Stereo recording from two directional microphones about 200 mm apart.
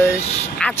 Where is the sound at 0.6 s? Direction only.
5° left (ahead or behind).